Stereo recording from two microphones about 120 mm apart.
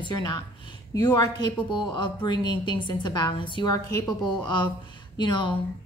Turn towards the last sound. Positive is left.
turn(degrees=40)  # may be behind; listen again after turning